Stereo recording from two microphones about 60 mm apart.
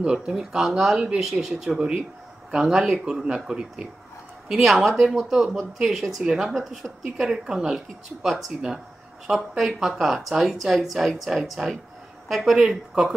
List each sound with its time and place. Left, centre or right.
0.0 s speech: centre
6.2 s speech: centre
6.5 s speech: centre
12.6 s speech: centre